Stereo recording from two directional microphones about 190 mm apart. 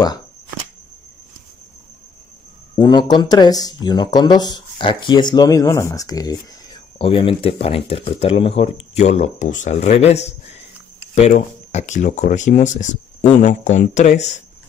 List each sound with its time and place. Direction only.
2.7 s speech: 20° left (ahead or behind); by 14.3 s 40° left (ahead or behind)